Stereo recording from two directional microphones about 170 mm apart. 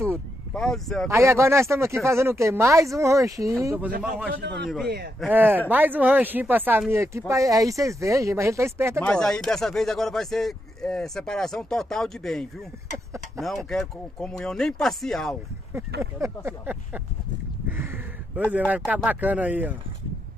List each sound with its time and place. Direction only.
0.5 s speech: 5° left (ahead or behind)
1.0 s speech: 15° right (ahead or behind)
4.3 s a man's voice: 75° right (ahead or behind)
5.3 s speech: 10° right (ahead or behind)
9.0 s speech: 5° left (ahead or behind)
16.0 s speech: 15° right (ahead or behind)
17.6 s a sound: 10° right (ahead or behind)
18.7 s speech: 10° right (ahead or behind)